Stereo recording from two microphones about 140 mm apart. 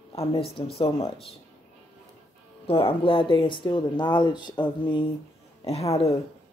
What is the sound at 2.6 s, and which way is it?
Speech, 40° left (ahead or behind).